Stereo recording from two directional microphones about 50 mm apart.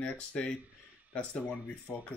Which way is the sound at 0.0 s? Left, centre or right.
Left.